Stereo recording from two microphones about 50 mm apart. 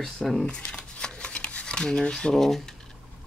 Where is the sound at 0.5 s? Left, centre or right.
Centre.